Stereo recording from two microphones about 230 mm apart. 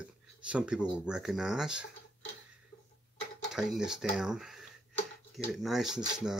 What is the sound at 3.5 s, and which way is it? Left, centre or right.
Speech, centre.